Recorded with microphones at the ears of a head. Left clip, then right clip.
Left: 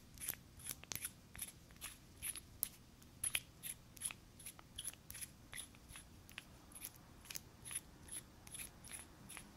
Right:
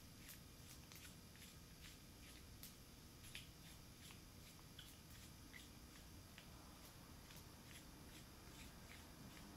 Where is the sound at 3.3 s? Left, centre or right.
Left.